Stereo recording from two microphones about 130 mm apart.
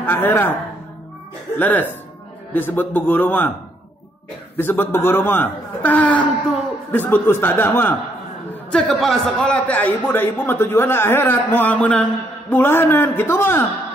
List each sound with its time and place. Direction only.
0.0 s a man's voice: 15° left (ahead or behind)
1.6 s a man's voice: 15° left (ahead or behind)
4.6 s a man's voice: 15° left (ahead or behind)
8.7 s a man's voice: 5° left (ahead or behind)